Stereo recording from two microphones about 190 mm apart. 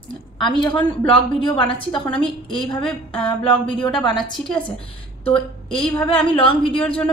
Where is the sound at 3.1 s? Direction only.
25° left (ahead or behind).